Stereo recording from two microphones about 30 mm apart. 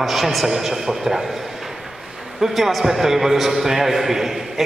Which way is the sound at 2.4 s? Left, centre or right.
Centre.